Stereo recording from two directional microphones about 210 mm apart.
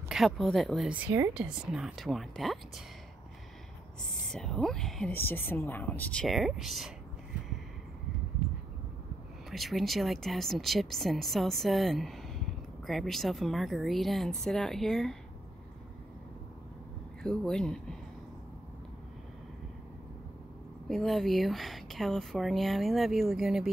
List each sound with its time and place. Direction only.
0.1 s speech: centre (ahead or behind)
4.1 s speech: 5° left (ahead or behind)
9.5 s speech: centre (ahead or behind)
17.2 s speech: 5° left (ahead or behind)
20.9 s speech: centre (ahead or behind)